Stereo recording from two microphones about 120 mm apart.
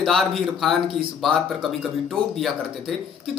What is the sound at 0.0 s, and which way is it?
Speech, centre (ahead or behind).